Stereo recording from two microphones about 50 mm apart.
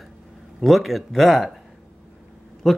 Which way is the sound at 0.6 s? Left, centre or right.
Centre.